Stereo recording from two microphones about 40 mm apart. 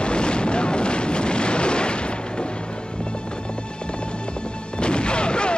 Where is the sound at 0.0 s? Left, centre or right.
Left.